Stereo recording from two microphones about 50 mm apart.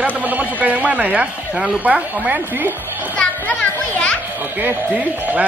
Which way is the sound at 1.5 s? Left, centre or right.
Centre.